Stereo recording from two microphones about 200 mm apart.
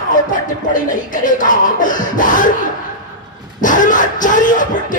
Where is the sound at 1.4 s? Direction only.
40° left (ahead or behind).